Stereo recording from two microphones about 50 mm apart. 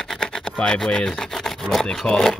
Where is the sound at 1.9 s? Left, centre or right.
Centre.